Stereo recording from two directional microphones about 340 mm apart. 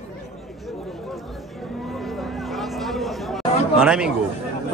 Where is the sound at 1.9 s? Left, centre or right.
Centre.